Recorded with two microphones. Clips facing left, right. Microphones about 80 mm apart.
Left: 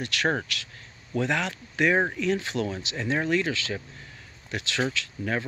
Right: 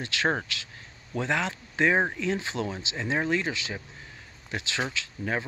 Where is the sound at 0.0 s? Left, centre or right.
Right.